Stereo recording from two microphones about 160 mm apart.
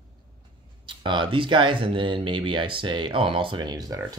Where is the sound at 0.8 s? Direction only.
30° right (ahead or behind).